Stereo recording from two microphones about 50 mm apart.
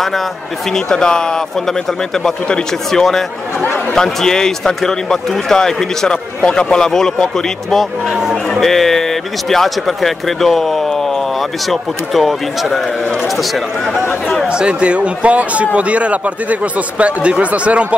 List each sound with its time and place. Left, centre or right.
0.7 s a man's voice: centre
8.1 s speech: centre
8.5 s speech: centre
14.5 s a man's voice: right